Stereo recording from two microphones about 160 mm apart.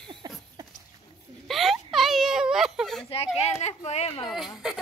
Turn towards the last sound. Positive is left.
turn(degrees=0)  # may be behind; listen again after turning